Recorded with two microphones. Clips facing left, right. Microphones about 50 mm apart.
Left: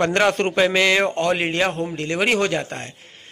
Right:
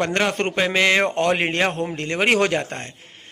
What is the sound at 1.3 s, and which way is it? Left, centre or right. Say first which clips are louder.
Speech: even; right.